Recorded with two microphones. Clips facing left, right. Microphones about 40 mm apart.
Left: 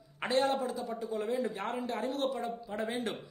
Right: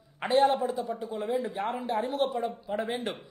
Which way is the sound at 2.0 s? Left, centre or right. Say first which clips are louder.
Right 6 dB; right.